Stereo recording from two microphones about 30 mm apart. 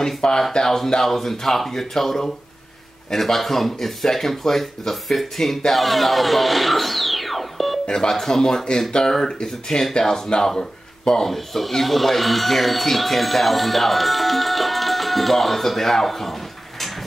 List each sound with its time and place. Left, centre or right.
0.2 s speech: left
1.0 s speech: centre
5.7 s music: centre
7.8 s speech: left
11.2 s speech: centre